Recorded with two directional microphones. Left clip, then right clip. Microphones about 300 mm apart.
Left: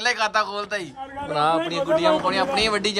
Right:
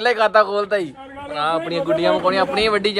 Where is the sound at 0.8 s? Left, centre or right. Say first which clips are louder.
Left 1 dB; left.